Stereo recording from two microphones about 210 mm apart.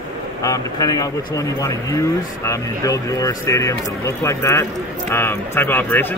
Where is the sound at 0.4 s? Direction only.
15° left (ahead or behind).